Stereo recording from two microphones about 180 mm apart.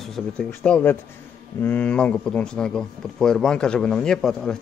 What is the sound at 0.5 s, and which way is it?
A man's voice, 10° left (ahead or behind).